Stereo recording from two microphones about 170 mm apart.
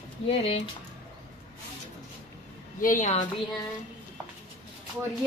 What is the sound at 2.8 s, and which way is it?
Speech, 50° left (ahead or behind).